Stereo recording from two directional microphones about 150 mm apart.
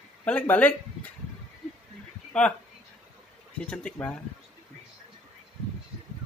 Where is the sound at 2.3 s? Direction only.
5° left (ahead or behind).